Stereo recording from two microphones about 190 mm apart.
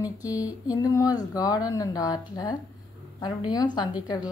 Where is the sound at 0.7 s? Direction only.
20° left (ahead or behind).